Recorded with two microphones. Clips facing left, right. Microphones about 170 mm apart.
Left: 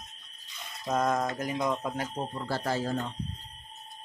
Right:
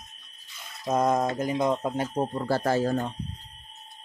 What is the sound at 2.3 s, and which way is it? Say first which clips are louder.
Speech: right 6 dB; 45° right (ahead or behind).